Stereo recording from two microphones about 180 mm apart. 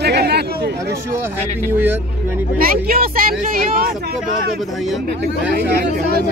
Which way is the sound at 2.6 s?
55° right (ahead or behind).